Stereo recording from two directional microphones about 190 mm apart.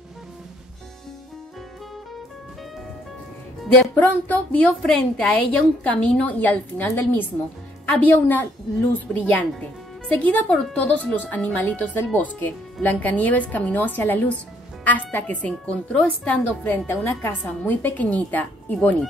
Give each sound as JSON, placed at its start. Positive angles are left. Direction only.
{"t": 3.6, "sound": "speech", "side_deg": 5}